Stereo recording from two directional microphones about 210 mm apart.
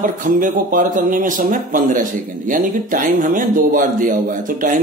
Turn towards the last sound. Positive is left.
turn(degrees=-40)  # may be behind; listen again after turning